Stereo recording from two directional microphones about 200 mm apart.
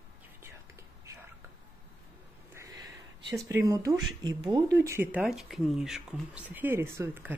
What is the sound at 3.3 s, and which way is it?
Speech, 15° right (ahead or behind).